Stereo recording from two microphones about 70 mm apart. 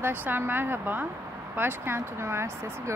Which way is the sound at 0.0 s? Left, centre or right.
Right.